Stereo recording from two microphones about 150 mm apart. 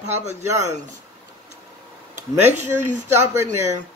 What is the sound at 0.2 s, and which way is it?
Speech, 50° right (ahead or behind).